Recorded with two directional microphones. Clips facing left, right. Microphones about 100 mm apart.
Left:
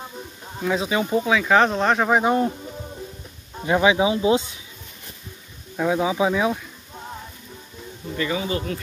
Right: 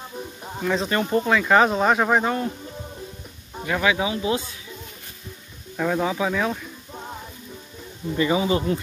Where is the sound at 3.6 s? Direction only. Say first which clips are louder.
Left 4 dB; 20° left (ahead or behind).